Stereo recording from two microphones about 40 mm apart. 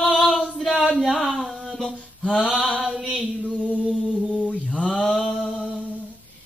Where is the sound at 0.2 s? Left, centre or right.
Centre.